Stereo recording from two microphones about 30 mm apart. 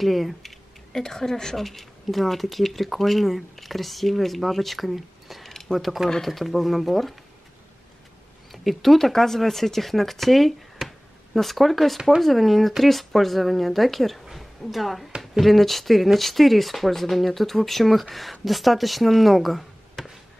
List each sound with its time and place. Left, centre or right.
0.0 s speech: centre
0.9 s speech: centre
1.6 s speech: centre
5.5 s a sound: centre
6.2 s speech: centre
8.5 s speech: centre
10.8 s a sound: centre
11.3 s speech: centre